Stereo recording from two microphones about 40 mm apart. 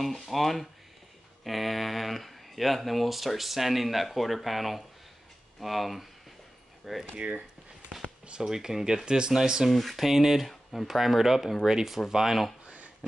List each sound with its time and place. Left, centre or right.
0.0 s speech: centre
8.4 s speech: centre
9.7 s speech: centre
10.5 s speech: centre
10.9 s speech: centre
12.6 s a sound: right